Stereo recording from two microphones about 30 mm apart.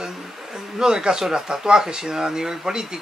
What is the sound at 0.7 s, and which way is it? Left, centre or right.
Speech, right.